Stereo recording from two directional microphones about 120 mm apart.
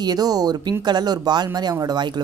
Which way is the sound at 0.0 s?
35° right (ahead or behind).